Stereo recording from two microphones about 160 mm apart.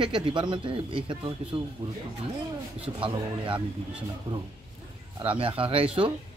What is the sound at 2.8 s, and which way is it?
Speech, 30° right (ahead or behind).